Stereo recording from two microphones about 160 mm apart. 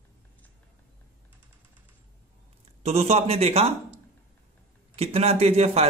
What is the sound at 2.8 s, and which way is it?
Speech, 40° right (ahead or behind).